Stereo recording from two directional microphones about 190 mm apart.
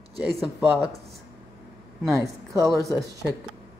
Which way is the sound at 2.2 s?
15° right (ahead or behind).